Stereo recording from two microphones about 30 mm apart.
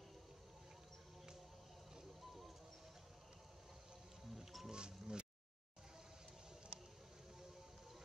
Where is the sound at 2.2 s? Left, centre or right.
Centre.